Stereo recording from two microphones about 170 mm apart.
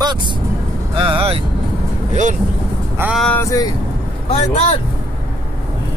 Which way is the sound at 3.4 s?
20° left (ahead or behind).